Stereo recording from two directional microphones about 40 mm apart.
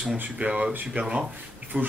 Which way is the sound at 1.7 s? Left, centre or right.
Right.